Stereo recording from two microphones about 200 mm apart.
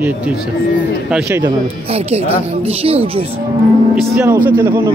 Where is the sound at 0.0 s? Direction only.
5° right (ahead or behind).